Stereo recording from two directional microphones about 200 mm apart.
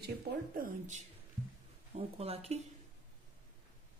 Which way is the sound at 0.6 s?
40° right (ahead or behind).